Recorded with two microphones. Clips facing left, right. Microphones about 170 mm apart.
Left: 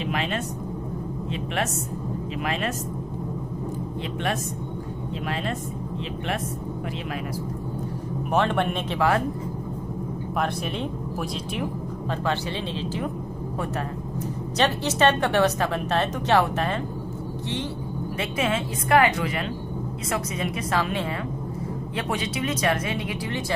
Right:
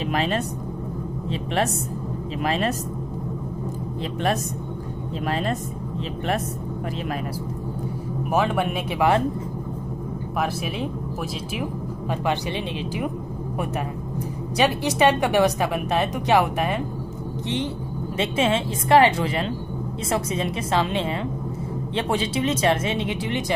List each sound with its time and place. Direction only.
0.0 s speech: 35° right (ahead or behind)
8.3 s a woman's voice: 5° right (ahead or behind)
10.4 s speech: 5° right (ahead or behind)
14.6 s a woman's voice: 10° right (ahead or behind)
18.1 s speech: 25° right (ahead or behind)